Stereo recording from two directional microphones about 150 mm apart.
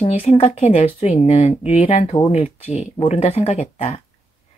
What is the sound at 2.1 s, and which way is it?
Speech, 35° left (ahead or behind).